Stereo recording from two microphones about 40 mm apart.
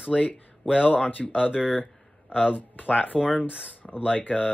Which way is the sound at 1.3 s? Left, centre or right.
Right.